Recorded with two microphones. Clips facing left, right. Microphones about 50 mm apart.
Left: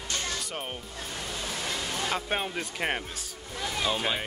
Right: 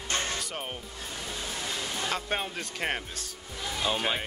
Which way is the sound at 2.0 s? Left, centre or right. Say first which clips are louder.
Left 1 dB; centre.